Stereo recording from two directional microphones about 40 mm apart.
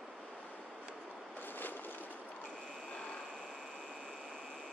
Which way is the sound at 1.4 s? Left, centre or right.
Left.